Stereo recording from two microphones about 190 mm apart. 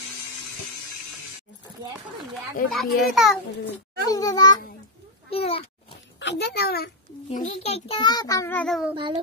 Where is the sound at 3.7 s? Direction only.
20° left (ahead or behind).